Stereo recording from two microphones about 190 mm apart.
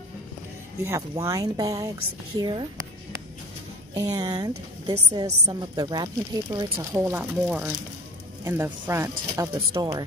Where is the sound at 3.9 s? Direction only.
20° right (ahead or behind).